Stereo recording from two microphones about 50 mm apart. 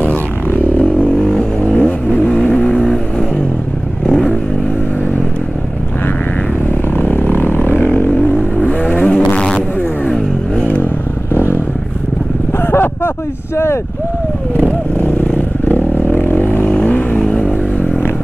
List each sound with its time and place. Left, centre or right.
1.6 s vehicle: left
2.7 s vehicle: centre
7.0 s vehicle: left
8.4 s vehicle: centre
9.0 s a sound: centre
10.0 s vehicle: centre
10.6 s vehicle: left
11.3 s vehicle: left
12.6 s a sound: left
14.7 s vehicle: left
17.2 s vehicle: centre